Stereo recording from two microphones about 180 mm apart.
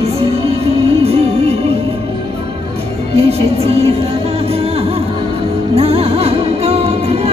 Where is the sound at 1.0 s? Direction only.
35° right (ahead or behind).